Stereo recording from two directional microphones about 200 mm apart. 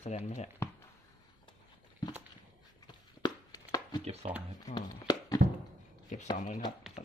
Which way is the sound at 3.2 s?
20° left (ahead or behind).